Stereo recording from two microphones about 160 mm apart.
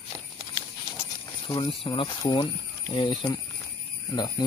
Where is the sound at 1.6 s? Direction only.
30° left (ahead or behind).